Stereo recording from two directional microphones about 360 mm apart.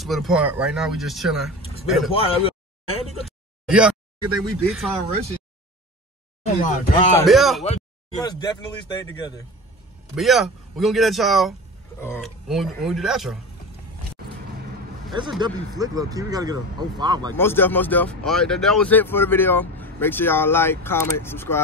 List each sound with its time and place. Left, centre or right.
0.0 s speech: centre
2.1 s speech: centre
3.6 s speech: centre
6.6 s speech: left
7.2 s speech: centre
7.6 s speech: centre
10.1 s speech: centre
14.2 s vehicle: right
15.1 s speech: centre
17.3 s speech: centre